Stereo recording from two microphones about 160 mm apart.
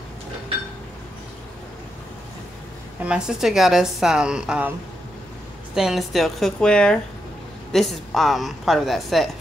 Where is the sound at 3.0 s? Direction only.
5° right (ahead or behind).